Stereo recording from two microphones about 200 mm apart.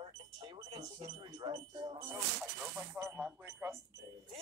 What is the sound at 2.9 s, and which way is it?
Speech, 10° right (ahead or behind).